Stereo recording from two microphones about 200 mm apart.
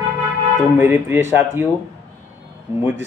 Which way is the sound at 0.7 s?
10° right (ahead or behind).